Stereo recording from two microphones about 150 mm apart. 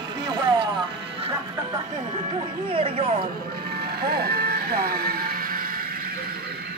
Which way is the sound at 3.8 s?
90° right.